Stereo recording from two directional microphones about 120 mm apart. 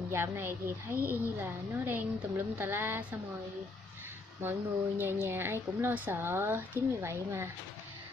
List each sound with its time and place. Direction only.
0.1 s a woman's voice: 20° right (ahead or behind)
4.4 s a woman's voice: 15° right (ahead or behind)